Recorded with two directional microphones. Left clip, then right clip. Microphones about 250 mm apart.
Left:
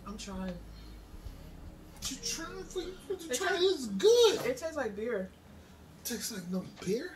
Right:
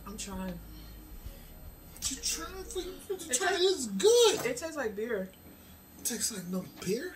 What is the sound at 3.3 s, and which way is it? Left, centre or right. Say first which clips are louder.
A woman's voice: right 1 dB; centre.